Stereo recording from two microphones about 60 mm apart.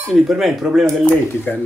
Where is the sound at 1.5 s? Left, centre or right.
Left.